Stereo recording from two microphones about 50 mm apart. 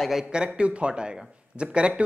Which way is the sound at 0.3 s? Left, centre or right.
Centre.